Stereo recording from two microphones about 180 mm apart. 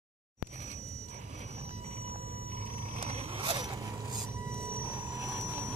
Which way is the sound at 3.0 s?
30° right (ahead or behind).